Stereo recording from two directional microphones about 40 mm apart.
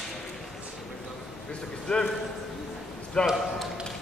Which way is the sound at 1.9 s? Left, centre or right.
Left.